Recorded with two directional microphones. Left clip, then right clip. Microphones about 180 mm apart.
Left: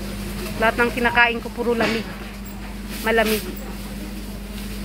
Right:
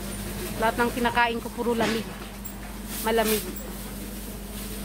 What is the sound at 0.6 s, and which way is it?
Speech, 15° right (ahead or behind).